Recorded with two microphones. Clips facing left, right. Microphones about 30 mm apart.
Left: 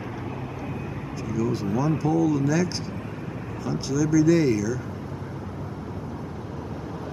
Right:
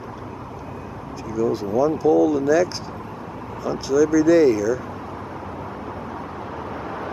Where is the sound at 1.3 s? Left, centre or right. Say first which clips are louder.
Right 5 dB; centre.